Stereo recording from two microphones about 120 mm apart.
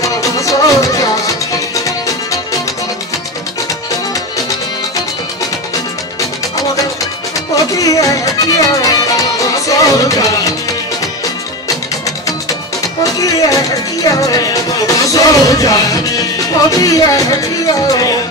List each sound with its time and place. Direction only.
0.0 s music: 30° left (ahead or behind)
7.7 s music: 30° left (ahead or behind)
13.0 s music: 30° left (ahead or behind)